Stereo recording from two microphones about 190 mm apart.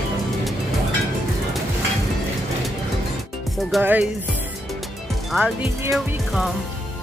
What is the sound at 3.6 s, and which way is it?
Speech, 5° right (ahead or behind).